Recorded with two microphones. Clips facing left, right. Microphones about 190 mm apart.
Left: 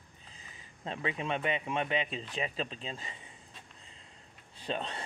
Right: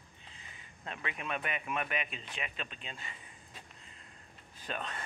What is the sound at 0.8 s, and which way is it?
Speech, 30° left (ahead or behind).